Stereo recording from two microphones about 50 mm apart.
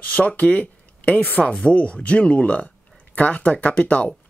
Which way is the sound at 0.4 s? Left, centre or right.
Left.